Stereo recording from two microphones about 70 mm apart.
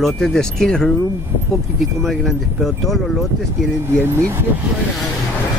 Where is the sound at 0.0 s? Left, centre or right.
Centre.